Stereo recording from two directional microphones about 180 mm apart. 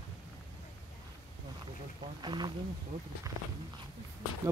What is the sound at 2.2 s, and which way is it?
Speech, 25° right (ahead or behind).